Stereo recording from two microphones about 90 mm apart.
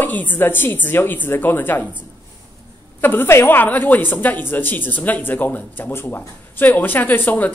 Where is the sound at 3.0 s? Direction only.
25° left (ahead or behind).